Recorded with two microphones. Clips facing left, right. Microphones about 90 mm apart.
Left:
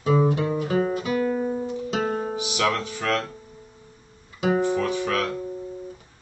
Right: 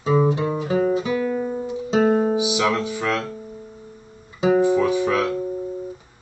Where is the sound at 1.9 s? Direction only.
25° right (ahead or behind).